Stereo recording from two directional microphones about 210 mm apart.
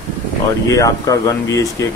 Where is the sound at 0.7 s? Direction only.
15° left (ahead or behind).